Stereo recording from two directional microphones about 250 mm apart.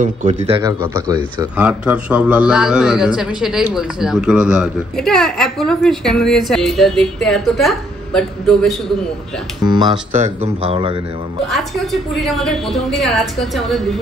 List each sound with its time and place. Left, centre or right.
0.0 s a man's voice: right; by 8.7 s centre
9.7 s speech: centre
11.4 s a man's voice: centre